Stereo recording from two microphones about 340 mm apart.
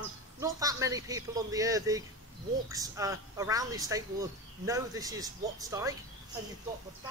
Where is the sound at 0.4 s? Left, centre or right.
Centre.